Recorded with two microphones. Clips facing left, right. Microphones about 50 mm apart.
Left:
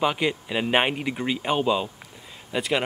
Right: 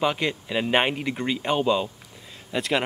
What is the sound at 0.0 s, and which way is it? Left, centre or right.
Speech, centre.